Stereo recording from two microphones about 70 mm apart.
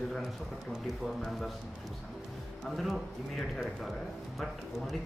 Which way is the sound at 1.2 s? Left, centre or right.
Centre.